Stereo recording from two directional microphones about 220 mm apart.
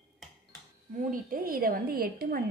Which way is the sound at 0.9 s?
35° right (ahead or behind).